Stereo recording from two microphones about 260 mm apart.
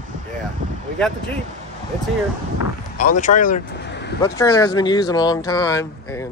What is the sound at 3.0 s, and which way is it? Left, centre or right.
Speech, left.